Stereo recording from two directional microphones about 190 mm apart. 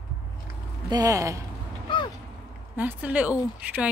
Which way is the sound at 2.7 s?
10° right (ahead or behind).